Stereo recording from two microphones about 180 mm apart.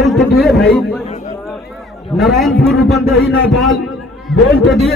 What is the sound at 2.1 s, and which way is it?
A man's voice, centre (ahead or behind).